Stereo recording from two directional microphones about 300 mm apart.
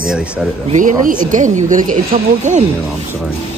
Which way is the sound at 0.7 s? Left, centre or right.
Right.